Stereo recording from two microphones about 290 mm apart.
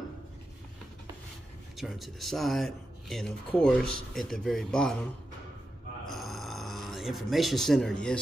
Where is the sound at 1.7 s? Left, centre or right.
Centre.